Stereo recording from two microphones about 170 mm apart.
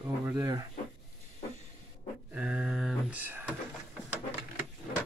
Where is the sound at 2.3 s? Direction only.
5° right (ahead or behind).